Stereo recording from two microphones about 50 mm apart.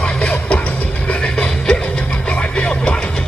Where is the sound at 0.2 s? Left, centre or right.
Left.